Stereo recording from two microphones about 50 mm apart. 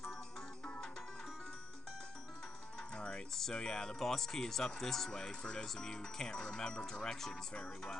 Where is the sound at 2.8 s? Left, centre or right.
Centre.